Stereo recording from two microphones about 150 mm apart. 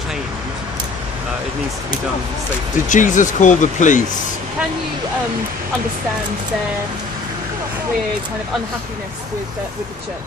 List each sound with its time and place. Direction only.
2.9 s speech: 55° left (ahead or behind)